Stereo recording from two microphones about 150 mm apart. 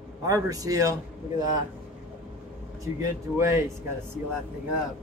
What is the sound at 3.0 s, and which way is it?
Speech, 20° right (ahead or behind).